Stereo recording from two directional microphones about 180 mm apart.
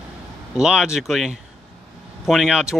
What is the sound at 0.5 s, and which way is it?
Speech, 5° right (ahead or behind).